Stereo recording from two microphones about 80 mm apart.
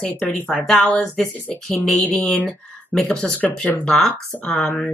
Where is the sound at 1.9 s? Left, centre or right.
Centre.